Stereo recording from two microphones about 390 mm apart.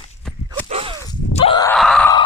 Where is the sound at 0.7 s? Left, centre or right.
Centre.